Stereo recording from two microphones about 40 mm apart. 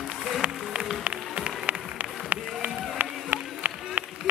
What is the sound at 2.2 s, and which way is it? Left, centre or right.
Run, right.